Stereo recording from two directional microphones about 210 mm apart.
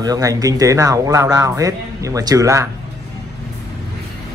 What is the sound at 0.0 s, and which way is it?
A man's voice, 15° right (ahead or behind).